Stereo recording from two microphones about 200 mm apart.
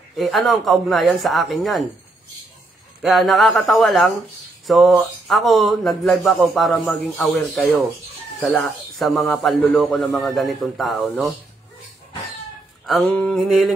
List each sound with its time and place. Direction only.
0.2 s speech: centre (ahead or behind)
3.0 s speech: centre (ahead or behind)
12.8 s speech: centre (ahead or behind)